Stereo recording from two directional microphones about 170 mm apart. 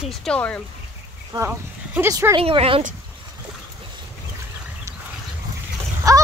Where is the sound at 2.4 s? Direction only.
35° right (ahead or behind).